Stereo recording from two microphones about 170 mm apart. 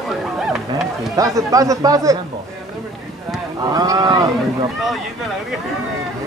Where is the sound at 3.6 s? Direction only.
20° right (ahead or behind).